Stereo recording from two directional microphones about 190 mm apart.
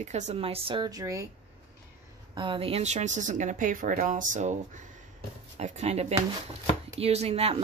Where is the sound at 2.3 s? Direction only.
25° right (ahead or behind).